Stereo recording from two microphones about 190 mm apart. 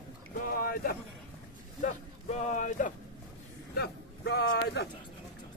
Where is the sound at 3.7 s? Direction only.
60° left (ahead or behind).